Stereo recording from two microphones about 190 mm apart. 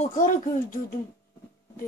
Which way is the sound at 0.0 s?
40° left (ahead or behind).